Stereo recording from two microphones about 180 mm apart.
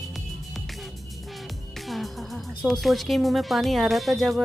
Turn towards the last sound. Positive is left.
turn(degrees=0)  # may be behind; listen again after turning